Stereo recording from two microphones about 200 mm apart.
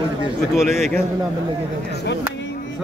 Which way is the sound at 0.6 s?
Centre (ahead or behind).